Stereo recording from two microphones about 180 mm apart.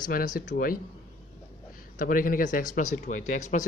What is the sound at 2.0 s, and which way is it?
Speech, 50° left (ahead or behind).